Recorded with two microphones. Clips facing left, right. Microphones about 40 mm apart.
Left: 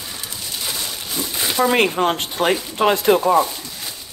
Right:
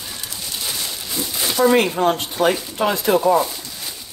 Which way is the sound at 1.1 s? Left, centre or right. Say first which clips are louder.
Even; centre.